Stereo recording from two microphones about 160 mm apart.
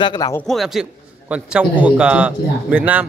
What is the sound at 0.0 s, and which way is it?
Speech, 30° left (ahead or behind).